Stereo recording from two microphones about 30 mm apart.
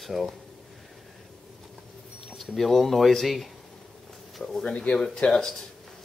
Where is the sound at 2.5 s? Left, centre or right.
Centre.